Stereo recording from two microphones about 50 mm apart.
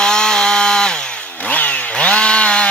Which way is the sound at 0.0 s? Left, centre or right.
Centre.